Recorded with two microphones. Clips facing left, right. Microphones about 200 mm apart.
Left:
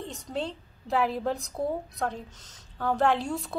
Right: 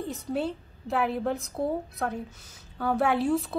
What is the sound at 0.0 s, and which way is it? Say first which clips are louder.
A woman's voice: right 4 dB; 5° right (ahead or behind).